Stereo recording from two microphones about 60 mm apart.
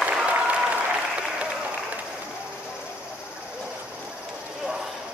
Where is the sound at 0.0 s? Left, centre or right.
Right.